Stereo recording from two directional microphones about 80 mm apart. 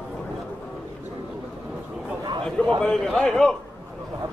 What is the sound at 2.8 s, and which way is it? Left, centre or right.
Speech, centre.